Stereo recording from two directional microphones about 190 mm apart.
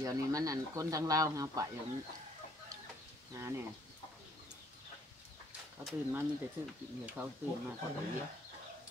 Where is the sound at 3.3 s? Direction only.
15° right (ahead or behind).